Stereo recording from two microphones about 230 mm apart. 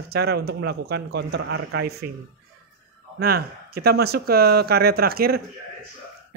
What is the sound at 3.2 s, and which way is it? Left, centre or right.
A man's voice, right.